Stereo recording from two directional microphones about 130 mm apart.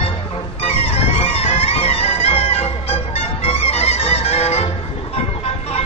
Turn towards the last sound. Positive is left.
turn(degrees=50)  # may be behind; listen again after turning